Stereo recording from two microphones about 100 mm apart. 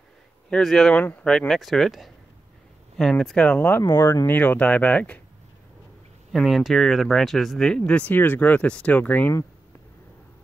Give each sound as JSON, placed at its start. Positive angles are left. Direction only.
{"t": 0.5, "sound": "speech", "side_deg": 5}
{"t": 3.9, "sound": "speech", "side_deg": 30}
{"t": 4.3, "sound": "speech", "side_deg": 15}
{"t": 6.3, "sound": "speech", "side_deg": 0}